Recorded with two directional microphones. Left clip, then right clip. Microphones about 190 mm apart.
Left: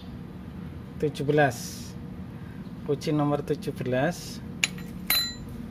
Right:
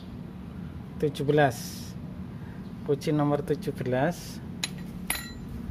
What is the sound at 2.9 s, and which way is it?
Speech, centre (ahead or behind).